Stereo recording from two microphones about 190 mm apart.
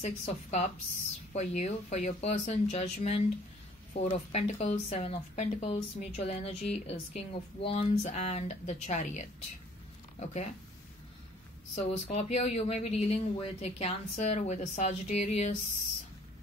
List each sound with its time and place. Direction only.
0.0 s speech: 35° left (ahead or behind)
11.7 s speech: 35° left (ahead or behind)